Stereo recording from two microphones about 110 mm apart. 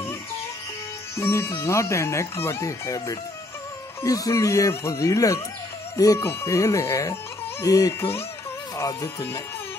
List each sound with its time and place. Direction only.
1.1 s speech: 25° left (ahead or behind)